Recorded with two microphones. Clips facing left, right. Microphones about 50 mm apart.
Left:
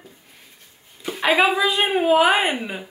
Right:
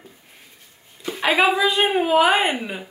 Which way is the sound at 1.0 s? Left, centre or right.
Centre.